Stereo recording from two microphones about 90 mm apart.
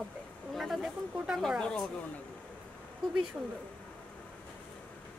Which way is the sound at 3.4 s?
20° right (ahead or behind).